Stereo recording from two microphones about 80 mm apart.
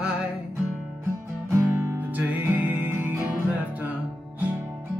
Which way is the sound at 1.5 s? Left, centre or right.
Right.